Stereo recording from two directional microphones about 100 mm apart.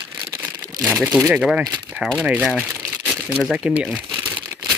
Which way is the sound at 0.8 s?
15° right (ahead or behind).